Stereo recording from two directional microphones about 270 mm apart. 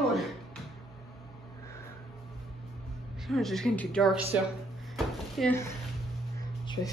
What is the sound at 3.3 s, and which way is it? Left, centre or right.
Speech, centre.